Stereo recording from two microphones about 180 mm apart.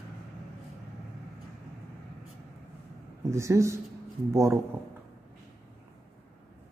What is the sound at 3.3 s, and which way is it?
A man's voice, 15° right (ahead or behind).